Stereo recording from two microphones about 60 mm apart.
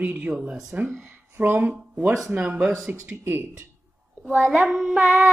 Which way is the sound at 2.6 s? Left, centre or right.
Centre.